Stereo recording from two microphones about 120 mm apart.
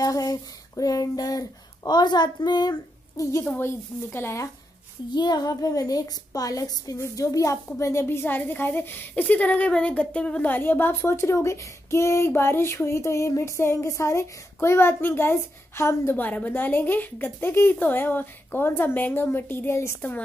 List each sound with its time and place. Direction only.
0.0 s a sound: 30° left (ahead or behind)
3.5 s speech: 20° left (ahead or behind)
5.1 s speech: 35° left (ahead or behind); by 20.2 s 20° left (ahead or behind)